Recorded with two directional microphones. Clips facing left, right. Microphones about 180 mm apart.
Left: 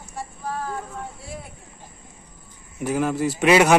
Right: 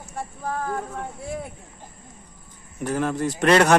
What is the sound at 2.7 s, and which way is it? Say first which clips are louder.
Speech: left 2 dB; 10° left (ahead or behind).